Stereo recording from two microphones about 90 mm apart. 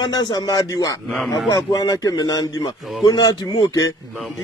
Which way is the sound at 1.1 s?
5° left (ahead or behind).